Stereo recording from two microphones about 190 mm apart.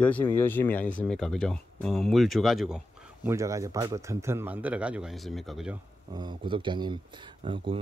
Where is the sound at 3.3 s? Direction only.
15° right (ahead or behind).